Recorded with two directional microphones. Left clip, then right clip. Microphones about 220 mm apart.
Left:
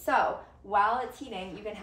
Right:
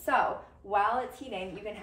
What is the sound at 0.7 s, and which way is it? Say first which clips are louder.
Speech: left 2 dB; 5° left (ahead or behind).